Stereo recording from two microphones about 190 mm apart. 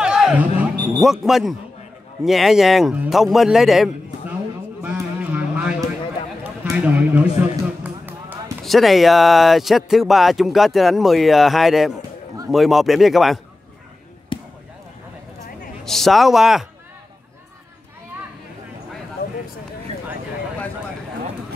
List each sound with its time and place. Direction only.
0.0 s a sound: 5° right (ahead or behind)
1.0 s speech: centre (ahead or behind)
4.8 s a sound: 10° right (ahead or behind)
6.4 s run: 5° right (ahead or behind)
8.6 s speech: centre (ahead or behind)
14.3 s basketball bounce: 25° left (ahead or behind)
15.8 s speech: centre (ahead or behind)